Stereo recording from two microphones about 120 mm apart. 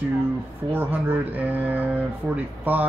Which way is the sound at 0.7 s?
15° right (ahead or behind).